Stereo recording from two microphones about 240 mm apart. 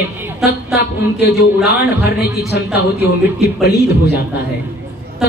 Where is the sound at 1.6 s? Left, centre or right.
Left.